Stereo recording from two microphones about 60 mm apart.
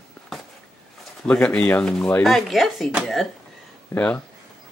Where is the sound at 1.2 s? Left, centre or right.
Centre.